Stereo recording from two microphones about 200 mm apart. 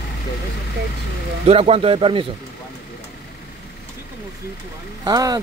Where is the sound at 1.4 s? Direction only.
30° right (ahead or behind).